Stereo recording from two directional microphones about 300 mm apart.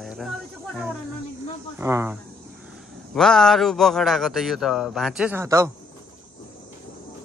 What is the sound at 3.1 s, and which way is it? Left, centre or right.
Speech, centre.